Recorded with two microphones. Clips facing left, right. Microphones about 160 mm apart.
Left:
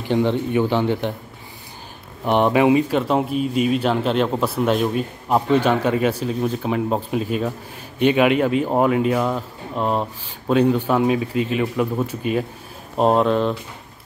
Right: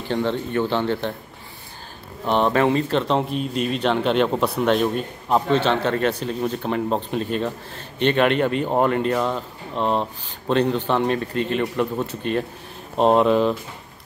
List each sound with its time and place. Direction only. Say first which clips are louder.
0.0 s speech: left 4 dB; 15° left (ahead or behind)
2.2 s speech: left 3 dB; 15° left (ahead or behind); by 13.6 s centre (ahead or behind)